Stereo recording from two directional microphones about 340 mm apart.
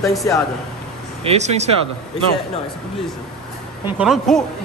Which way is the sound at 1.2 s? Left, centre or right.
Centre.